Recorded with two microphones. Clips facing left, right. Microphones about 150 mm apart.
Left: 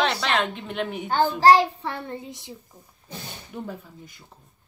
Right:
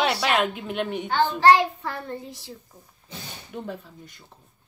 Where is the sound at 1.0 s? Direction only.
40° left (ahead or behind); by 2.5 s 20° left (ahead or behind).